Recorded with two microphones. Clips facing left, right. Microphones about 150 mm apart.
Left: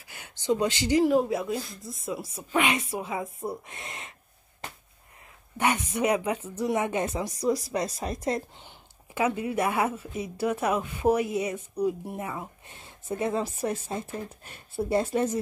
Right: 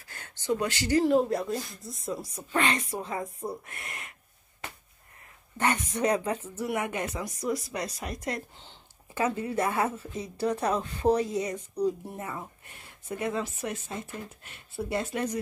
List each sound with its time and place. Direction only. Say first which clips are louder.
0.1 s speech: left 3 dB; 15° left (ahead or behind)
1.0 s speech: left 1 dB; 5° left (ahead or behind)
3.6 s speech: left 2 dB; 20° left (ahead or behind)
5.6 s speech: left 1 dB; 10° left (ahead or behind)
6.6 s speech: left 5 dB; 20° left (ahead or behind)
8.5 s speech: left 2 dB; 10° left (ahead or behind)
12.6 s speech: left 4 dB; 25° left (ahead or behind)